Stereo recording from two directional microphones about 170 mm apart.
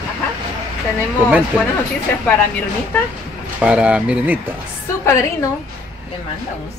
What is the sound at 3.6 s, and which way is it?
Speech, 5° right (ahead or behind).